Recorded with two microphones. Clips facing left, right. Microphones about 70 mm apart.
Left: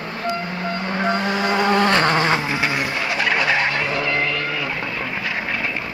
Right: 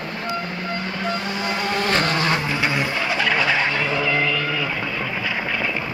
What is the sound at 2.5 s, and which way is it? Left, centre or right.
Vehicle, centre.